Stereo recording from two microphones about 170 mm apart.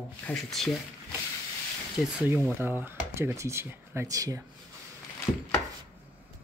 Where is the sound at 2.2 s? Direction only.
15° right (ahead or behind).